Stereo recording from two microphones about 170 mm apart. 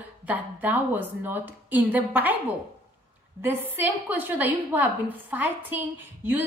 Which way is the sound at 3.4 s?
10° right (ahead or behind).